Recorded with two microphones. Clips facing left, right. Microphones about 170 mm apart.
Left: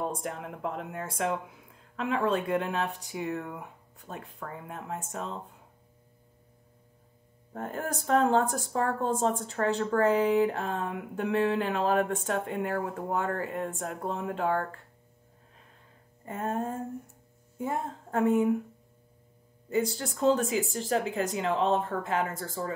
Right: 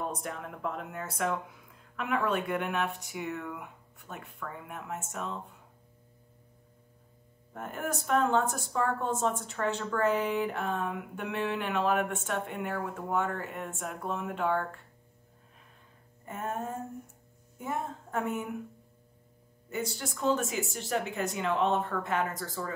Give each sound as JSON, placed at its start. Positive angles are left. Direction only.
{"t": 0.0, "sound": "speech", "side_deg": 30}
{"t": 7.5, "sound": "speech", "side_deg": 30}
{"t": 16.3, "sound": "a sound", "side_deg": 40}
{"t": 17.6, "sound": "a woman's voice", "side_deg": 30}
{"t": 19.7, "sound": "speech", "side_deg": 30}